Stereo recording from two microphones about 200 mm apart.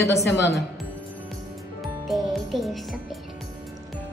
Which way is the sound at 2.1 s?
Centre (ahead or behind).